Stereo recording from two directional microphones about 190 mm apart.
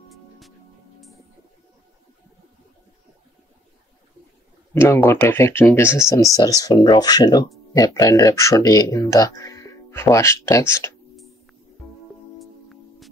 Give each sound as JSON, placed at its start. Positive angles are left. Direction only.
{"t": 4.7, "sound": "speech", "side_deg": 10}
{"t": 12.4, "sound": "music", "side_deg": 0}